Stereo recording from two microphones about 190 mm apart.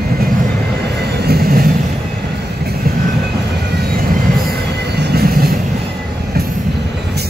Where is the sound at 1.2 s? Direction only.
55° right (ahead or behind).